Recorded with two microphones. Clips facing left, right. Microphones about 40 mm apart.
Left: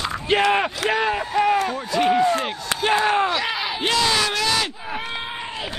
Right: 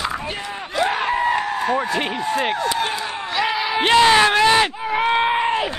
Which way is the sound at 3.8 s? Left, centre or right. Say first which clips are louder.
Right 7 dB; right.